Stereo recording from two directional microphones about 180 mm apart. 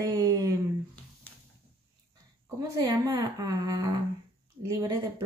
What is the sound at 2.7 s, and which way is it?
A woman's voice, 20° right (ahead or behind).